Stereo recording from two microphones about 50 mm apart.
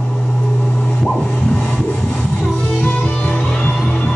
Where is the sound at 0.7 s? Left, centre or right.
Left.